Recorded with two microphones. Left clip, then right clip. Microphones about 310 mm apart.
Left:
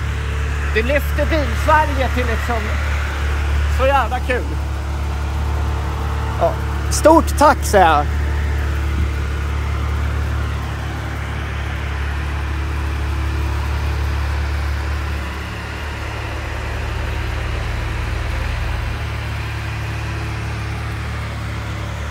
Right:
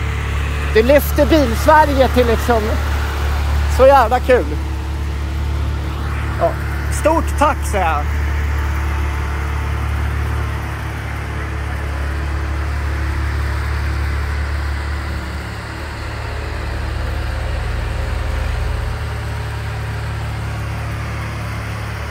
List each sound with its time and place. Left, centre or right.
0.7 s speech: centre
3.8 s speech: centre
7.1 s speech: left